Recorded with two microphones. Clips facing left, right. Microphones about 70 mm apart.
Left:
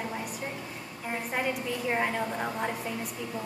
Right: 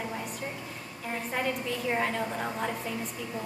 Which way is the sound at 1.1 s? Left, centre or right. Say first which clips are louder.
Even; centre.